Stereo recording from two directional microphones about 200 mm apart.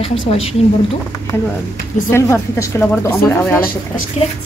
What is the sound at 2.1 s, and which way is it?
Speech, 15° left (ahead or behind).